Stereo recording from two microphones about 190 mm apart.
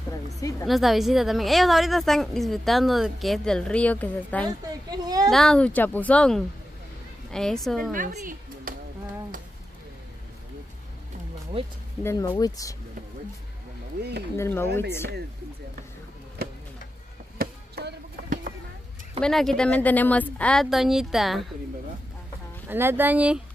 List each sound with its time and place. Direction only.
0.1 s speech: 15° left (ahead or behind)
0.7 s a woman's voice: centre (ahead or behind)
4.9 s a woman's voice: 20° right (ahead or behind)
5.3 s a woman's voice: 5° left (ahead or behind)
7.9 s speech: 45° right (ahead or behind)
12.0 s speech: 15° left (ahead or behind)
14.3 s speech: 15° left (ahead or behind)
17.4 s chop: 55° right (ahead or behind)
19.2 s a woman's voice: 5° left (ahead or behind)
22.7 s speech: 10° right (ahead or behind)